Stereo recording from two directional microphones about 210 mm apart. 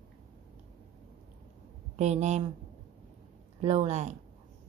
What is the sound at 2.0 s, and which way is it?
Speech, 35° right (ahead or behind).